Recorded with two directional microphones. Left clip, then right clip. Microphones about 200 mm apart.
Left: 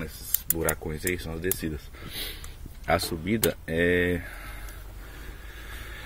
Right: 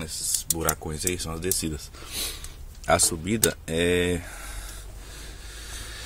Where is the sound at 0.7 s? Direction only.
15° right (ahead or behind).